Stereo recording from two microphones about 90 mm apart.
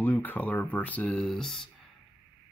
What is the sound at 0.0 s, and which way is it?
Speech, 20° left (ahead or behind).